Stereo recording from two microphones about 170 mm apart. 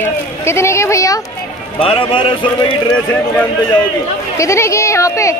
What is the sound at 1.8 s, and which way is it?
Speech, 35° left (ahead or behind).